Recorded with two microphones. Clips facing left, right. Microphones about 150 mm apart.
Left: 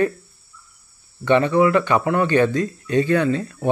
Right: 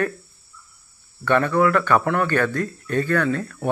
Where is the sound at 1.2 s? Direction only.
15° left (ahead or behind).